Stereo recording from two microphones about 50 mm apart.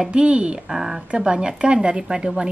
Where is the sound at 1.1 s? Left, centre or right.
Centre.